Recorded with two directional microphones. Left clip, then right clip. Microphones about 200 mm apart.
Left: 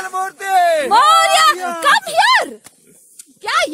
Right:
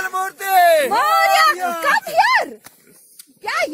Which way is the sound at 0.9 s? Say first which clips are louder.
Left 4 dB; 15° left (ahead or behind).